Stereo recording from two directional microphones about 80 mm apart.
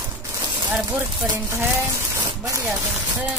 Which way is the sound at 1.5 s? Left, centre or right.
Right.